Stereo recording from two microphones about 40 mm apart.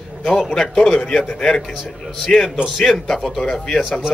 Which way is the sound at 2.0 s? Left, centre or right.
Centre.